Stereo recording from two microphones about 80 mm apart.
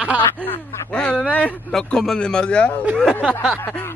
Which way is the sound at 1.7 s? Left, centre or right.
Centre.